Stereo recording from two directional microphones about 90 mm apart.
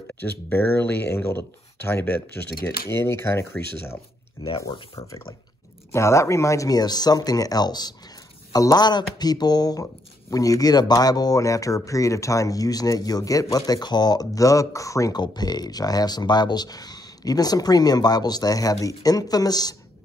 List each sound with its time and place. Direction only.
0.2 s speech: 25° left (ahead or behind)
15.1 s speech: 50° left (ahead or behind)